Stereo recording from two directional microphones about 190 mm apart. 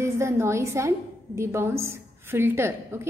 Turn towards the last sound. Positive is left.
turn(degrees=-15)  # may be behind; listen again after turning